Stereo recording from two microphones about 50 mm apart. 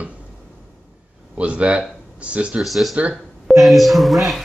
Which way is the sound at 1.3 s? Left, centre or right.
Right.